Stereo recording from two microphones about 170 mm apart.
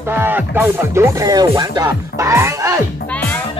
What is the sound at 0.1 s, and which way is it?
Speech, 10° right (ahead or behind).